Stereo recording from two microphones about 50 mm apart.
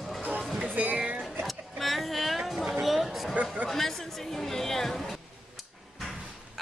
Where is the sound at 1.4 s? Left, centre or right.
Centre.